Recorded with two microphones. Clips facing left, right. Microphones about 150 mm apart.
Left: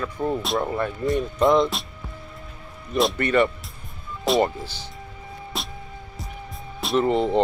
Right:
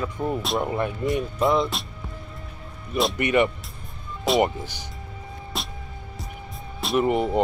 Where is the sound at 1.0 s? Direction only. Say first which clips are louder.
Left 4 dB; centre (ahead or behind).